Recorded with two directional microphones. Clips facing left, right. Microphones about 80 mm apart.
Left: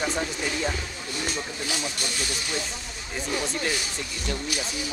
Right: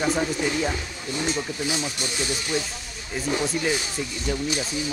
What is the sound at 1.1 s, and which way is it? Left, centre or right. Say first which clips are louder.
Speech: right 5 dB; right.